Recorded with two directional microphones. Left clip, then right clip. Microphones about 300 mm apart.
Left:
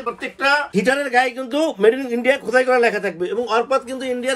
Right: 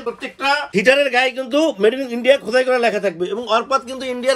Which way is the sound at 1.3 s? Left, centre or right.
Right.